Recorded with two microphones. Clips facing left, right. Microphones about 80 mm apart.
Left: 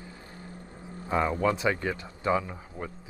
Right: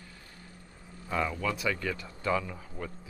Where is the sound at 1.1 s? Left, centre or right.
Left.